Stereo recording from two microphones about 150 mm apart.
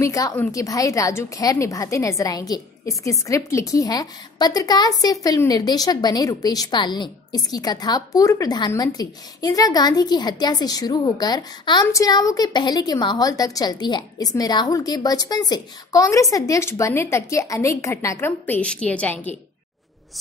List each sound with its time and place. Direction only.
0.0 s a woman's voice: 20° left (ahead or behind)